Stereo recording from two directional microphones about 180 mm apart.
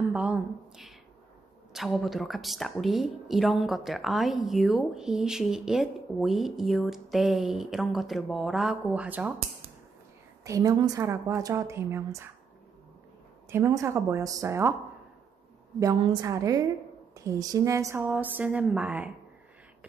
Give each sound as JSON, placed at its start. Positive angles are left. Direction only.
{"t": 0.1, "sound": "a woman's voice", "side_deg": -5}
{"t": 10.4, "sound": "a woman's voice", "side_deg": -20}
{"t": 13.5, "sound": "a woman's voice", "side_deg": -15}
{"t": 15.8, "sound": "a woman's voice", "side_deg": -20}